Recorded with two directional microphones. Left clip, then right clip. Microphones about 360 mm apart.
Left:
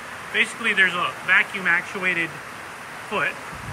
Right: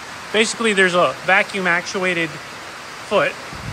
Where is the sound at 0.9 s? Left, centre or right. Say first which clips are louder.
Right 4 dB; centre.